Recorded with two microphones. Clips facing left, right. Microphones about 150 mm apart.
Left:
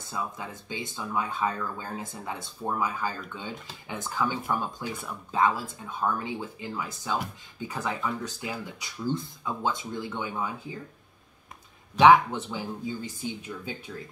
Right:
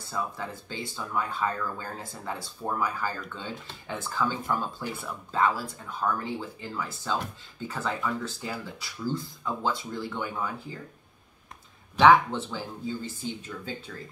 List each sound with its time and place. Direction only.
0.1 s speech: 15° left (ahead or behind)
12.0 s speech: 15° left (ahead or behind)